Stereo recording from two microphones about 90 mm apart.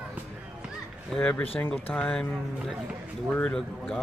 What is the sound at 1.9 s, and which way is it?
Speech, 10° left (ahead or behind).